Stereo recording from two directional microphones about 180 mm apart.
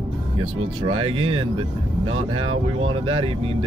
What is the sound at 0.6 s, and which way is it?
Speech, 30° right (ahead or behind).